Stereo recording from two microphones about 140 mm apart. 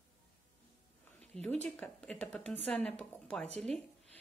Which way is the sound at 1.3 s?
10° left (ahead or behind).